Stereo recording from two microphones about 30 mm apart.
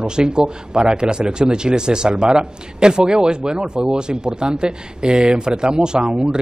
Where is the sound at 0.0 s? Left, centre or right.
Right.